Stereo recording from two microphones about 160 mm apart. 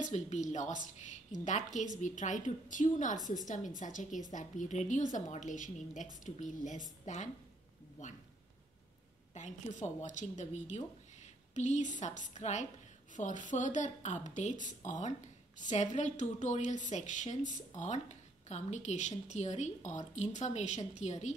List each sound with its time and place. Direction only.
0.1 s a woman's voice: 45° left (ahead or behind)
9.3 s a woman's voice: 50° left (ahead or behind)